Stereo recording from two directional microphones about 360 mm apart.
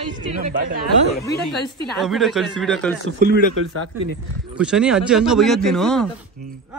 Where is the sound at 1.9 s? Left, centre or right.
Centre.